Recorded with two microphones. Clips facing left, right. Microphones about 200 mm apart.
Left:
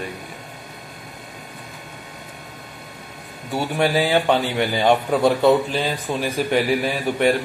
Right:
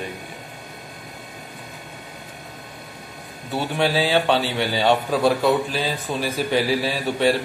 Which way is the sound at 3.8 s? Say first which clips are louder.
Left 1 dB; 10° left (ahead or behind).